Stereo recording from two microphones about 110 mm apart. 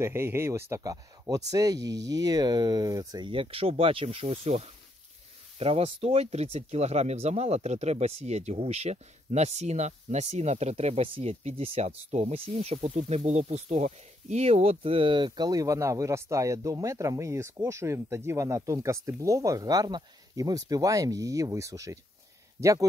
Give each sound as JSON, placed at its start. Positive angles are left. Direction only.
{"t": 0.0, "sound": "speech", "side_deg": -20}
{"t": 3.3, "sound": "speech", "side_deg": -55}